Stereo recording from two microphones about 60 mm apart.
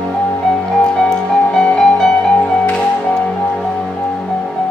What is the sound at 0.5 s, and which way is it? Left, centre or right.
Music, centre.